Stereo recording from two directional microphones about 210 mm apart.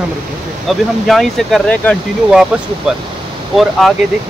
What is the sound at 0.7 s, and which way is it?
Speech, centre (ahead or behind).